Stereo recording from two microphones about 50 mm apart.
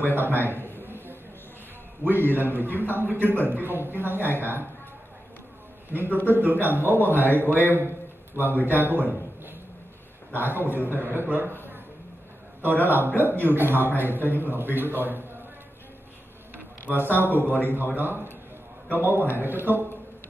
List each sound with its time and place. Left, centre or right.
0.0 s a man's voice: right
0.8 s a sound: right
2.0 s a man's voice: right
6.2 s a man's voice: right
10.3 s a man's voice: right
12.6 s a man's voice: right
16.9 s a man's voice: right
17.4 s a man's voice: left
17.9 s a man's voice: right
19.3 s a man's voice: right